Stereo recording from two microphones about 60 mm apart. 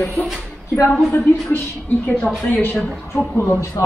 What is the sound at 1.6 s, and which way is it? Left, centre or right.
A woman's voice, left.